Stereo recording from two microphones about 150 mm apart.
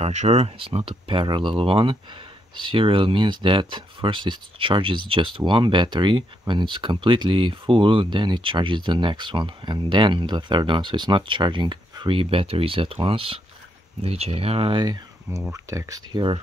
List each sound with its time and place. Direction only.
0.0 s speech: 50° right (ahead or behind); by 16.0 s 20° right (ahead or behind)
16.1 s speech: 30° right (ahead or behind)